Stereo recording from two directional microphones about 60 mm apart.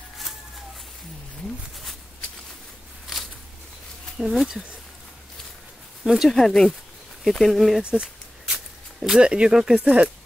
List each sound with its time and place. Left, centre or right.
4.2 s speech: centre
6.0 s speech: centre
6.3 s speech: centre
7.8 s a sound: centre
9.0 s speech: centre